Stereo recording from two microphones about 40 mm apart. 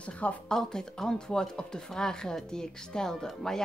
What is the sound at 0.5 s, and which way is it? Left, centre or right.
Speech, centre.